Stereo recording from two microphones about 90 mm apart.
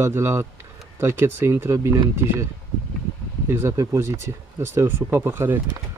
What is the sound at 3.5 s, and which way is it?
Speech, 30° right (ahead or behind).